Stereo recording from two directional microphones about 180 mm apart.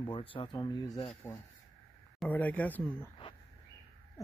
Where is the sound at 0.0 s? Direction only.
30° left (ahead or behind).